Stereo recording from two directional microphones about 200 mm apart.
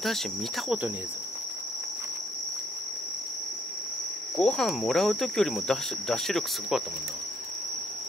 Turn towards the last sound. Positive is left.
turn(degrees=0)  # may be behind; listen again after turning